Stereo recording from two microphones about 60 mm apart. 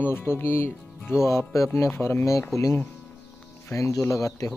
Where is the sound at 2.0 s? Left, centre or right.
Left.